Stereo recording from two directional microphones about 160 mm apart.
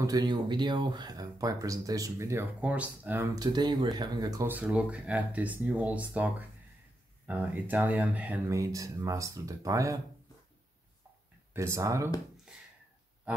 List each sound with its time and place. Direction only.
0.0 s speech: 25° right (ahead or behind)
3.3 s speech: 25° right (ahead or behind)
4.5 s speech: 10° right (ahead or behind)
11.5 s speech: 20° right (ahead or behind)